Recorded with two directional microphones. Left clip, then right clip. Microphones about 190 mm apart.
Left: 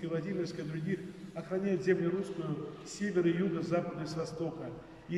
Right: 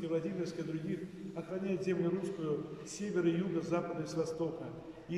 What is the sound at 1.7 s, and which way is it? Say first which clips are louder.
Speech: left 6 dB; 15° right (ahead or behind).